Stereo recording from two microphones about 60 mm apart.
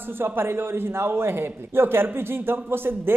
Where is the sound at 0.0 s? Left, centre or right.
Right.